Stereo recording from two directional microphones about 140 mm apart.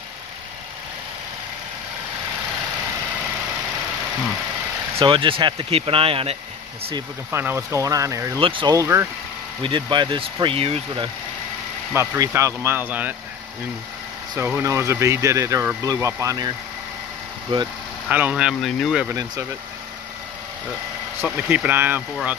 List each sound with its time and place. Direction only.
4.9 s speech: 35° right (ahead or behind)
7.2 s speech: 15° right (ahead or behind)
8.4 s speech: 35° right (ahead or behind)
8.7 s speech: 20° right (ahead or behind)
9.6 s speech: 35° right (ahead or behind)
11.9 s speech: 20° right (ahead or behind)
14.4 s speech: 15° right (ahead or behind)
18.0 s speech: 10° right (ahead or behind)
21.2 s speech: 15° right (ahead or behind)